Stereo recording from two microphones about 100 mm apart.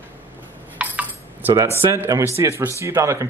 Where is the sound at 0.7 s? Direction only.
15° right (ahead or behind).